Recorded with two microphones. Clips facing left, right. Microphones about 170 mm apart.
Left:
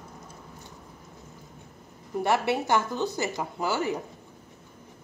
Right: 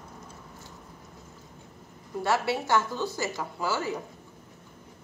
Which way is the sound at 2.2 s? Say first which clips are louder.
Left 2 dB; 20° left (ahead or behind).